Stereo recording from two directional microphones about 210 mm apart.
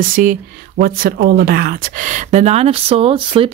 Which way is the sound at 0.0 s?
40° right (ahead or behind).